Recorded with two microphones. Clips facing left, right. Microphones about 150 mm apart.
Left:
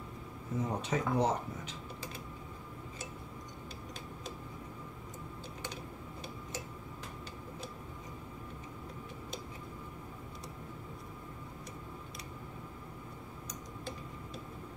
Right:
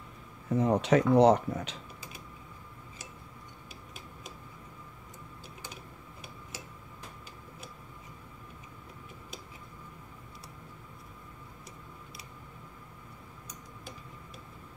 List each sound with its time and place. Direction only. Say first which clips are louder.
0.6 s speech: right 10 dB; 75° right (ahead or behind)